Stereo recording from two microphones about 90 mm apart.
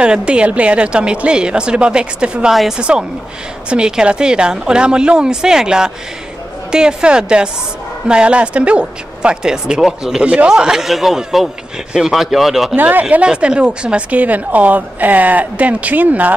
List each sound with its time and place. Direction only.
0.0 s speech: 10° right (ahead or behind)
12.7 s speech: 20° right (ahead or behind)